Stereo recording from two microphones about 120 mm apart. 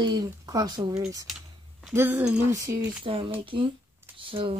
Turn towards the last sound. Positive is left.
turn(degrees=-50)  # may be behind; listen again after turning